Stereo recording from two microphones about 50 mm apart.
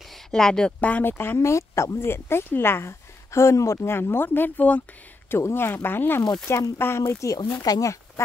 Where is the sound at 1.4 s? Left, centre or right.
Left.